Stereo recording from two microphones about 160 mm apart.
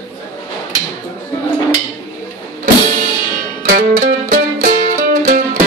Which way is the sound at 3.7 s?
60° right (ahead or behind).